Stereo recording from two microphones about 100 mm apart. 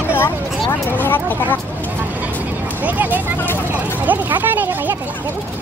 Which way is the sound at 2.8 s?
15° right (ahead or behind).